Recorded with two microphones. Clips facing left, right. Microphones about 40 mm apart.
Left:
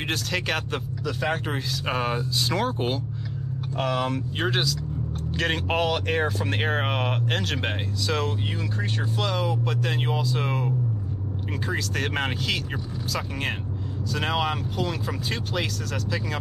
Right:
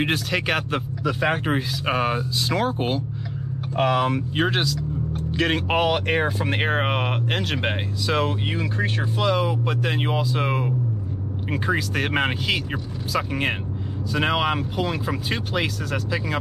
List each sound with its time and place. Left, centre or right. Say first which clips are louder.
0.0 s speech: right 4 dB; centre
3.7 s speech: right 5 dB; right